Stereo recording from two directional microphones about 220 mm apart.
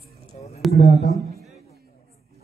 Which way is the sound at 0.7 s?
50° left (ahead or behind).